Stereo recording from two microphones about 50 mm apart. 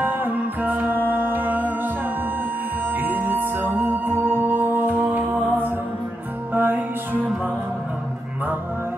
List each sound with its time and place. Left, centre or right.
0.0 s music: right
2.9 s music: right
6.5 s music: right